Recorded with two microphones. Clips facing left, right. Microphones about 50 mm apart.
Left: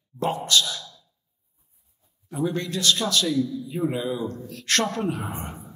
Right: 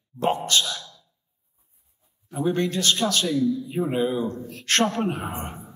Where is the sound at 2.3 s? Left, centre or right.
Right.